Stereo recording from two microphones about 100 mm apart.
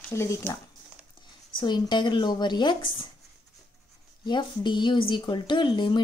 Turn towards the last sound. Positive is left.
turn(degrees=55)  # may be behind; listen again after turning